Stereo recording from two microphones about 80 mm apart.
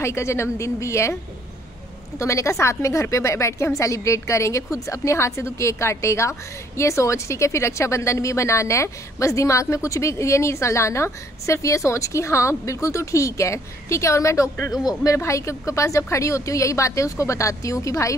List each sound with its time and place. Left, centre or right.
0.0 s a woman's voice: left
2.1 s a woman's voice: left